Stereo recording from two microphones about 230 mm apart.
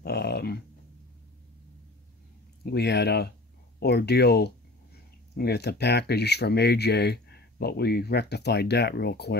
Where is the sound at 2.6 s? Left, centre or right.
Left.